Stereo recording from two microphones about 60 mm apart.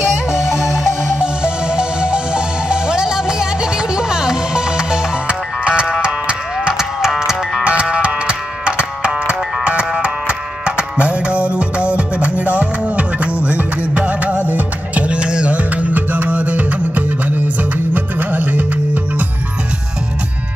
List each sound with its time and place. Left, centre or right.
1.1 s music: centre
7.6 s music: centre